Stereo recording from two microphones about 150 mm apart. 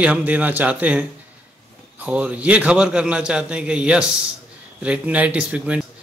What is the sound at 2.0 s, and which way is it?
A man's voice, 10° right (ahead or behind).